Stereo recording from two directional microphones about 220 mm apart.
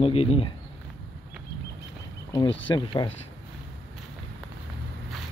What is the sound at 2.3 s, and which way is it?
Speech, 20° left (ahead or behind).